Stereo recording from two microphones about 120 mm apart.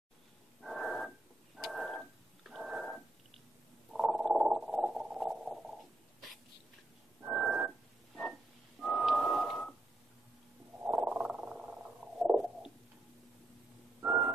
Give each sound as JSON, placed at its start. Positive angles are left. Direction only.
{"t": 0.6, "sound": "wheeze", "side_deg": 0}
{"t": 1.6, "sound": "dog", "side_deg": 0}
{"t": 3.9, "sound": "frog", "side_deg": 0}
{"t": 7.2, "sound": "wheeze", "side_deg": -10}
{"t": 8.8, "sound": "a sound", "side_deg": 0}
{"t": 10.9, "sound": "purr", "side_deg": -10}
{"t": 14.0, "sound": "a sound", "side_deg": -15}